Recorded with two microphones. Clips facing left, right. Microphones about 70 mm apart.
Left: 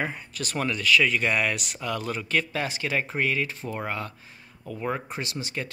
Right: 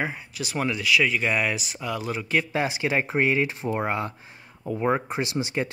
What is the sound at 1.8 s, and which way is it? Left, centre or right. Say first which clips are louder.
Speech: right 1 dB; centre.